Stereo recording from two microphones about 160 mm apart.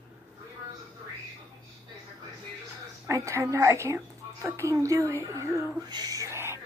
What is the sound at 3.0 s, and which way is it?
A woman's voice, 20° right (ahead or behind).